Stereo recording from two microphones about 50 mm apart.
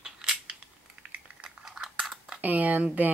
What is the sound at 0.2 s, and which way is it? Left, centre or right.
Scissors, centre.